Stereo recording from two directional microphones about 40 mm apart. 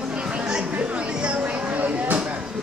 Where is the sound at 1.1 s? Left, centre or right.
Right.